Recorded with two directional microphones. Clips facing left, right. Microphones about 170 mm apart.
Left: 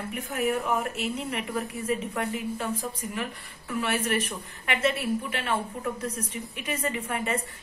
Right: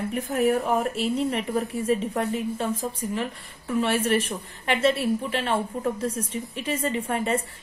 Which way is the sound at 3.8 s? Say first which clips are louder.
Right 4 dB; 30° right (ahead or behind).